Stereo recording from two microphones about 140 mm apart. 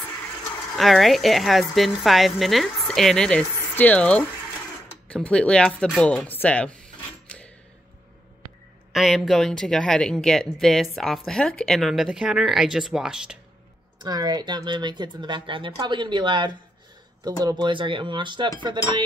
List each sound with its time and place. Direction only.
0.7 s speech: centre (ahead or behind)
8.9 s speech: centre (ahead or behind)
14.0 s speech: 30° right (ahead or behind)